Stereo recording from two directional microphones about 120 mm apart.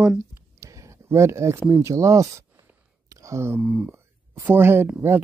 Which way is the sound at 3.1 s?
25° right (ahead or behind).